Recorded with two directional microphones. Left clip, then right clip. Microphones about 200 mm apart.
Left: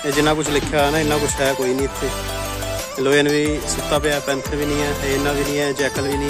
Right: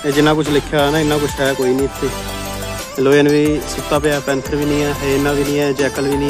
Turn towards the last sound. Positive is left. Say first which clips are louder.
# right 4 dB
turn(degrees=0)  # may be behind; listen again after turning